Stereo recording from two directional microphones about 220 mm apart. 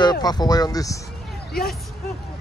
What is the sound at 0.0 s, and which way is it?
Speech, 20° left (ahead or behind).